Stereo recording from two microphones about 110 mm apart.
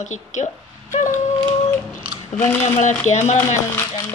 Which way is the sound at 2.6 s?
90° left.